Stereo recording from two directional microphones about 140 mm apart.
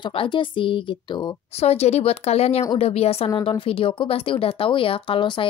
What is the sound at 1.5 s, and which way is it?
A woman's voice, 50° left (ahead or behind).